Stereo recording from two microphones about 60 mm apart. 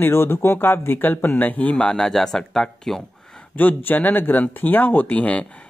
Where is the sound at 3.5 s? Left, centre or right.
Left.